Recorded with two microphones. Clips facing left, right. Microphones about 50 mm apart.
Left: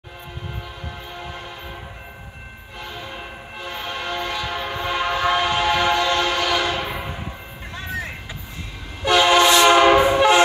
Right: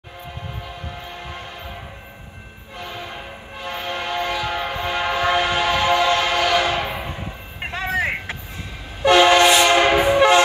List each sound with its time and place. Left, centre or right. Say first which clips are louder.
2.8 s train horn: right 2 dB; centre
3.5 s train: right 3 dB; centre
7.7 s vehicle: right 8 dB; right
9.0 s train: right 2 dB; centre